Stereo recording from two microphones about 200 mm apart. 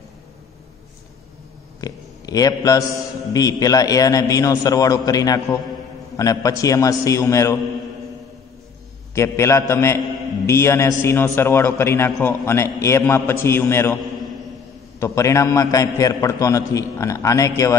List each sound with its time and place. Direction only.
1.8 s a man's voice: 20° left (ahead or behind)
9.1 s a man's voice: 15° left (ahead or behind)
15.0 s a man's voice: 15° left (ahead or behind)